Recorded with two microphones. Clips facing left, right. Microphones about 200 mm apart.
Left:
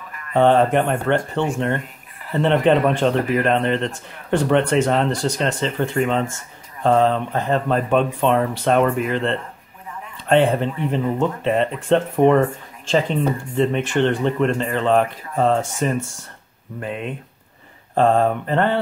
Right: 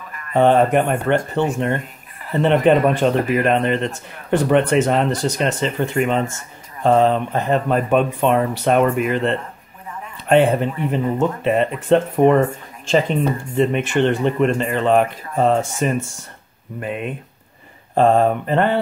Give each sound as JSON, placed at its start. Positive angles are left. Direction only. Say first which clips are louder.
{"t": 0.3, "sound": "a man's voice", "louder": "right 1 dB", "side_deg": -10}